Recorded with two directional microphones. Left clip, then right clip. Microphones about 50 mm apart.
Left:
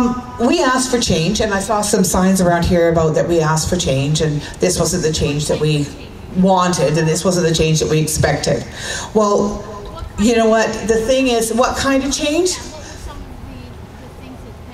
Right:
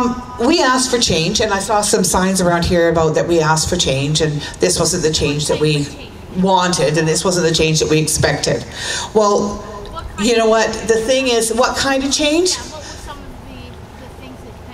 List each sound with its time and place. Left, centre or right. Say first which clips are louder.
0.0 s a woman's voice: right 1 dB; right